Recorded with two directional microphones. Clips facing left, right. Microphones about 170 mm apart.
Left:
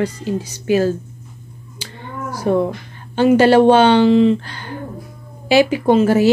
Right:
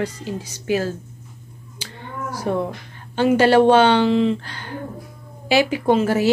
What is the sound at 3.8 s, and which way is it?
Speech, centre (ahead or behind).